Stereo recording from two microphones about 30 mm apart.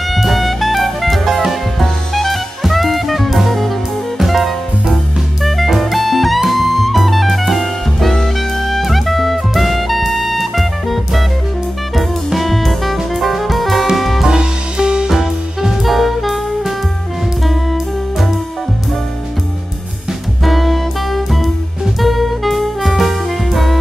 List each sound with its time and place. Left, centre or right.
0.1 s music: centre
1.8 s jazz: centre
4.2 s music: centre
14.2 s music: right
15.0 s music: centre
15.8 s jazz: centre
20.4 s music: centre